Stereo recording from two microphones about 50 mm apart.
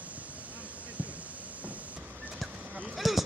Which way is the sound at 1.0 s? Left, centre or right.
Right.